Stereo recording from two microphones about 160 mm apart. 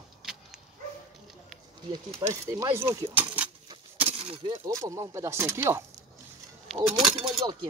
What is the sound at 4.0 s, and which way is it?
Breaking, 35° right (ahead or behind).